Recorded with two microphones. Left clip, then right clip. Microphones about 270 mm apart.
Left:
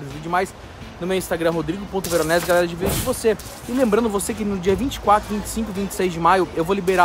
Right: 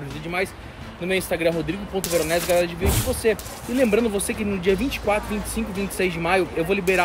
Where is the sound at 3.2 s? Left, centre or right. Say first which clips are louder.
Left 1 dB; centre.